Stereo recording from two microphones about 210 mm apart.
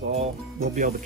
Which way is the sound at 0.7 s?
35° right (ahead or behind).